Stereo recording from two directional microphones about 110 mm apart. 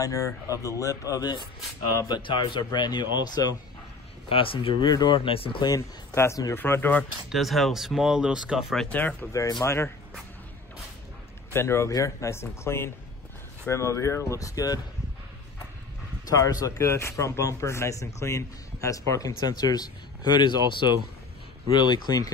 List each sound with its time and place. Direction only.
0.0 s a man's voice: 30° left (ahead or behind)
2.0 s a man's voice: 45° left (ahead or behind)
4.3 s speech: 55° left (ahead or behind)
5.7 s speech: 25° left (ahead or behind)
7.2 s speech: centre (ahead or behind)
8.8 s speech: 15° left (ahead or behind)
9.3 s speech: 30° left (ahead or behind)
11.5 s speech: 25° left (ahead or behind)
16.3 s a man's voice: 35° left (ahead or behind)
21.9 s a man's voice: 35° left (ahead or behind)